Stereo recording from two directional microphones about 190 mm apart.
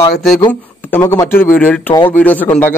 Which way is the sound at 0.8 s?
15° left (ahead or behind).